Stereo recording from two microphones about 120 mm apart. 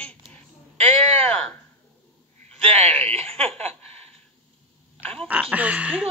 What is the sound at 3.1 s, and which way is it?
Snicker, 55° right (ahead or behind).